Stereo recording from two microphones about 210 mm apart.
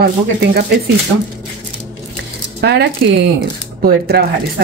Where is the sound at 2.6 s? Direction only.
50° right (ahead or behind).